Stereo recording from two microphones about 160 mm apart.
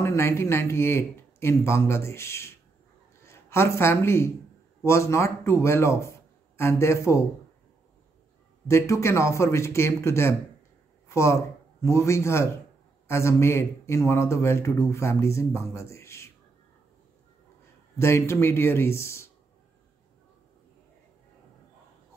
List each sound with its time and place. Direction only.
0.0 s a man's voice: 15° left (ahead or behind)
8.6 s a man's voice: 20° left (ahead or behind)
17.9 s a man's voice: 15° left (ahead or behind)